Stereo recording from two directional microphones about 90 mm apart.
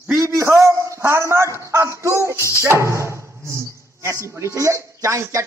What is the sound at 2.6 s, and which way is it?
Speech, 30° right (ahead or behind).